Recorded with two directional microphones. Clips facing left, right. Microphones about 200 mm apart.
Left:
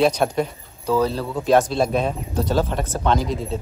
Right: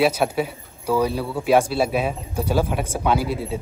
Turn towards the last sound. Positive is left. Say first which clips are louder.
# even
turn(degrees=-10)  # may be behind; listen again after turning